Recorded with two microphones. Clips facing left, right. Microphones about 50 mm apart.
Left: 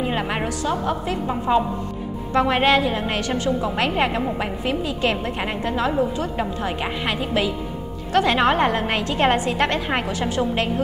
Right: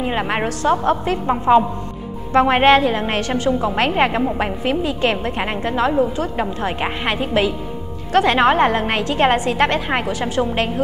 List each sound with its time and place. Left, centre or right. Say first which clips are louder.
0.0 s a woman's voice: right 3 dB; centre
0.6 s a woman's voice: right 6 dB; right
2.3 s a woman's voice: right 5 dB; right
9.8 s a woman's voice: right 3 dB; centre
10.3 s a woman's voice: right 3 dB; right